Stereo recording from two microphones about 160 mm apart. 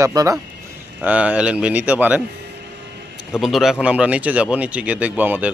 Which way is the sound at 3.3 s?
Centre (ahead or behind).